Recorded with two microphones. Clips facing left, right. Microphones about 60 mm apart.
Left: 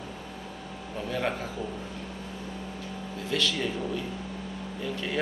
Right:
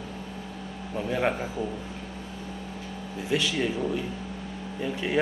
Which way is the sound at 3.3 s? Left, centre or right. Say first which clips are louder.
Right 2 dB; centre.